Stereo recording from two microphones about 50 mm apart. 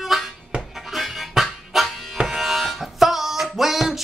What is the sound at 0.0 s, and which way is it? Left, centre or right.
Harmonica, centre.